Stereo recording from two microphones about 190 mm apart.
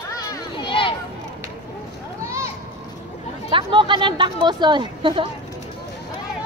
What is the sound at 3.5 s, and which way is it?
Speech, 25° right (ahead or behind).